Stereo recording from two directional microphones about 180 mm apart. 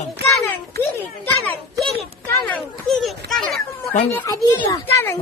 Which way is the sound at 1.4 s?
10° left (ahead or behind).